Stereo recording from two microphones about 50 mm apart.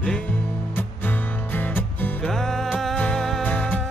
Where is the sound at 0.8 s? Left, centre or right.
Left.